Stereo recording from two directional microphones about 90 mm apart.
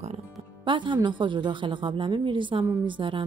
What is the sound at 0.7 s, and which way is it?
Speech, 65° right (ahead or behind).